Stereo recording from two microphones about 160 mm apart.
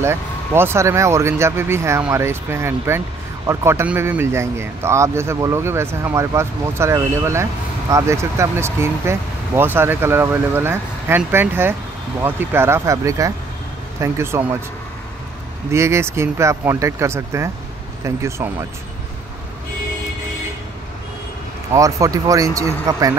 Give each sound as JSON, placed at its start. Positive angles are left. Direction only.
{"t": 0.0, "sound": "speech", "side_deg": -15}
{"t": 15.7, "sound": "speech", "side_deg": -15}
{"t": 21.7, "sound": "speech", "side_deg": -20}